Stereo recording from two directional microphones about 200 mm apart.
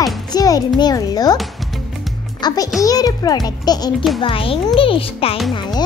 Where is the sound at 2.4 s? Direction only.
20° left (ahead or behind).